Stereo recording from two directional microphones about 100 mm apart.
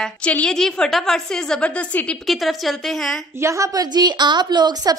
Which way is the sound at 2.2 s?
Centre (ahead or behind).